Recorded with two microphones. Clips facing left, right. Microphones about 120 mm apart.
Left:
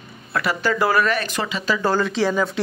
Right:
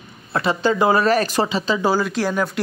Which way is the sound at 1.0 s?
35° right (ahead or behind).